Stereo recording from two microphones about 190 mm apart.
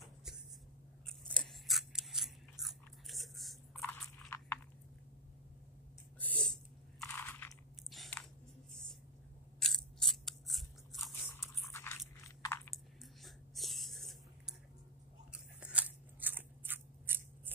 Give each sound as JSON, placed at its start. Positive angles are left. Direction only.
{"t": 1.0, "sound": "scissors", "side_deg": 5}
{"t": 6.1, "sound": "crunch", "side_deg": 5}
{"t": 9.6, "sound": "scissors", "side_deg": 0}
{"t": 11.6, "sound": "biting", "side_deg": 15}
{"t": 12.7, "sound": "a sound", "side_deg": 0}
{"t": 15.3, "sound": "crunch", "side_deg": -5}